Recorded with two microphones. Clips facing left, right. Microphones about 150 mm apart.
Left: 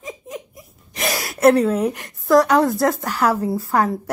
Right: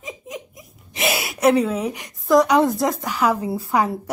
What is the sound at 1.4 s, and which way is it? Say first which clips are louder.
Speech: left 3 dB; 10° right (ahead or behind).